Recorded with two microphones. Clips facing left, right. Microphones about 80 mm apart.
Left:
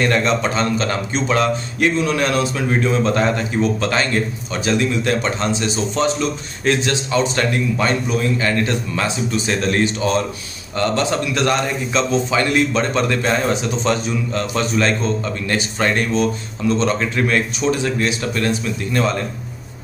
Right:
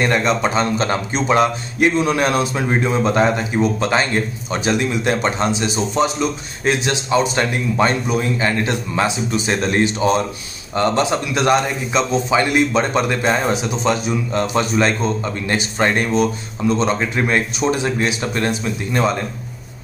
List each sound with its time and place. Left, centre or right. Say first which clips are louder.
0.0 s a man's voice: even; centre